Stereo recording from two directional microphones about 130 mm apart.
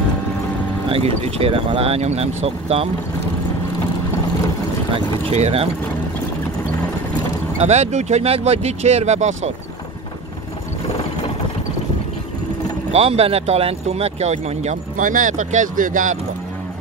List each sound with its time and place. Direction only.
0.8 s speech: 50° right (ahead or behind)
5.3 s speech: 50° right (ahead or behind)
7.5 s speech: 55° right (ahead or behind)
12.9 s speech: 50° right (ahead or behind); by 16.2 s 90° right